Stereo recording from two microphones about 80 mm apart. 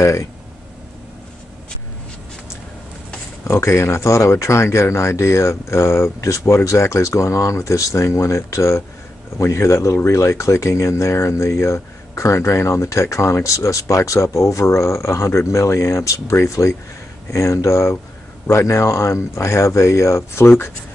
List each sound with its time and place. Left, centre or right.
0.0 s speech: left
3.4 s speech: left